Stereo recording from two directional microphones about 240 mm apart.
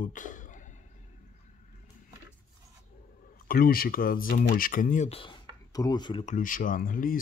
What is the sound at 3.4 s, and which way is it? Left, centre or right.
Speech, left.